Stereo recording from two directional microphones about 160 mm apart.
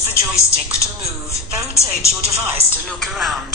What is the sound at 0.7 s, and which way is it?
A woman's voice, 20° left (ahead or behind).